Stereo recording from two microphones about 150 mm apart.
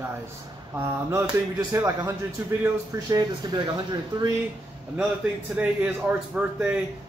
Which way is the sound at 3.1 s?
30° right (ahead or behind).